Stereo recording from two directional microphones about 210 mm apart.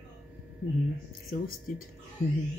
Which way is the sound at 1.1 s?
45° left (ahead or behind).